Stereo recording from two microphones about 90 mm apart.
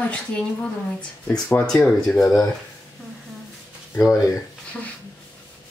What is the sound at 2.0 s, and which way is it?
Speech, 5° left (ahead or behind).